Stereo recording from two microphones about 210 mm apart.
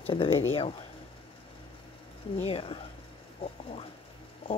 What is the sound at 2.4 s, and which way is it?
Speech, 25° left (ahead or behind).